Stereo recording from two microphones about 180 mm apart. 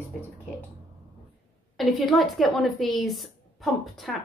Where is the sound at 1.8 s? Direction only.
Centre (ahead or behind).